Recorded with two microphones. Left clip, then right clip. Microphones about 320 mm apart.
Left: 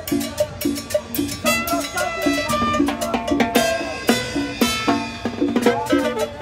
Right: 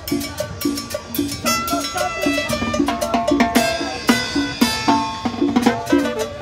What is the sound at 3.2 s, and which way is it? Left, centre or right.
Music, centre.